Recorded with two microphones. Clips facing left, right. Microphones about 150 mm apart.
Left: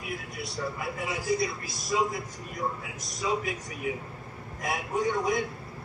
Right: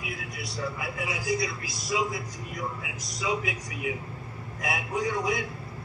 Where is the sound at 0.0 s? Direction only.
45° left (ahead or behind).